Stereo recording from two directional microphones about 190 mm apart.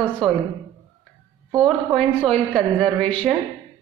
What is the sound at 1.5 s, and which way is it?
A woman's voice, centre (ahead or behind).